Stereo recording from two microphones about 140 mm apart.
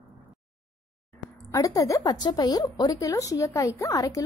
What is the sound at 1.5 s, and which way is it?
A woman's voice, 25° left (ahead or behind).